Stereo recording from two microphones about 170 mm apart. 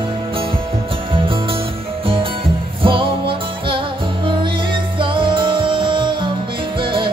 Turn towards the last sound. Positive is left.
turn(degrees=-30)  # may be behind; listen again after turning